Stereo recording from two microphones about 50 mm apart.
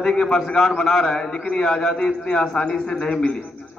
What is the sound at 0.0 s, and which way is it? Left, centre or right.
A man's voice, centre.